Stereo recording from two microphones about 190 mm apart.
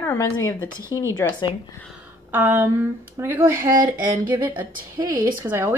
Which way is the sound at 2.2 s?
10° right (ahead or behind).